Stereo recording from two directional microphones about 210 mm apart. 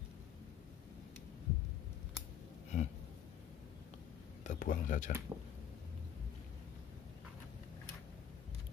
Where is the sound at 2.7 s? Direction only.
35° left (ahead or behind).